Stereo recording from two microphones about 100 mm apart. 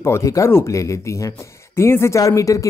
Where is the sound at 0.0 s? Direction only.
30° left (ahead or behind).